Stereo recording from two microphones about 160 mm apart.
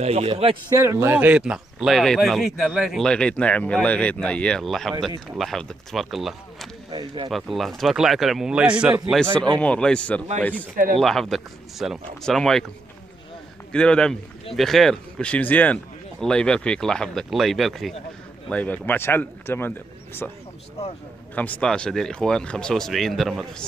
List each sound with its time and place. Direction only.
0.0 s speech: 40° right (ahead or behind)
0.7 s speech: 15° right (ahead or behind); by 6.7 s centre (ahead or behind)
6.9 s speech: 25° right (ahead or behind)
7.2 s speech: centre (ahead or behind)
9.2 s speech: 5° left (ahead or behind)
13.7 s speech: 5° left (ahead or behind)